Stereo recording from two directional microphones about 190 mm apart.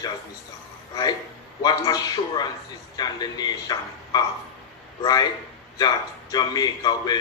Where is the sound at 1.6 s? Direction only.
20° left (ahead or behind).